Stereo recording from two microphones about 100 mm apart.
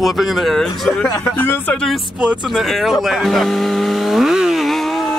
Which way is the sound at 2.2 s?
5° right (ahead or behind).